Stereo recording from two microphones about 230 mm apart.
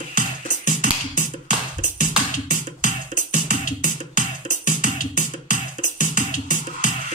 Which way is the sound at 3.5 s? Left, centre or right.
Left.